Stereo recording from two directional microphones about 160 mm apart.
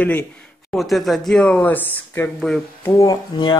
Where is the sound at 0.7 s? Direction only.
Centre (ahead or behind).